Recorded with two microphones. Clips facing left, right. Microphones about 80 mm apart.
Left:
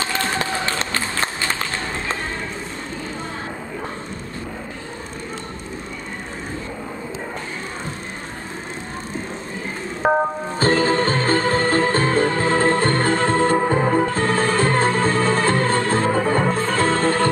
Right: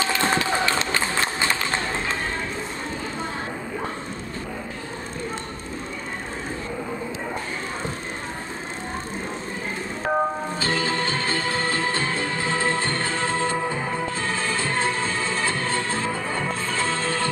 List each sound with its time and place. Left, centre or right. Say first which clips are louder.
10.6 s music: left 9 dB; left